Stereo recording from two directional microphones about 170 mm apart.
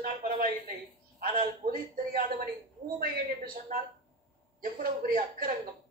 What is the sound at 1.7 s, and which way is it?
A man's voice, 60° right (ahead or behind).